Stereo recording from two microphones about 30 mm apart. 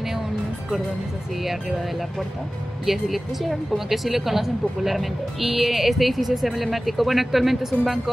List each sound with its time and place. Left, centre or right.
1.4 s speech: centre